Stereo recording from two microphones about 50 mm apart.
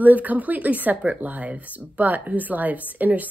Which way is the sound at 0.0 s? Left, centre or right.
Right.